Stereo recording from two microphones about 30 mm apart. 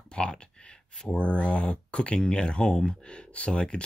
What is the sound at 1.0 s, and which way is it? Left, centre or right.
Speech, left.